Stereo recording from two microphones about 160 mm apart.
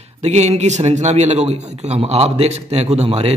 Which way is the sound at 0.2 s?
45° right (ahead or behind).